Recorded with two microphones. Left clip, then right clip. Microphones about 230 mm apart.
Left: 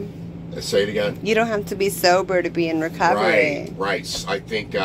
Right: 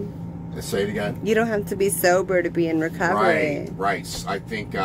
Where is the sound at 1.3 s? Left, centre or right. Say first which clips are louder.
Right 1 dB; centre.